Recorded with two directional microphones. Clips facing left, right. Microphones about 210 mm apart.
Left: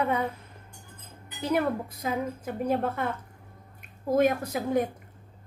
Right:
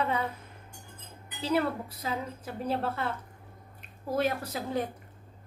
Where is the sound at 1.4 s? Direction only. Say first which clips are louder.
Left 2 dB; 15° left (ahead or behind).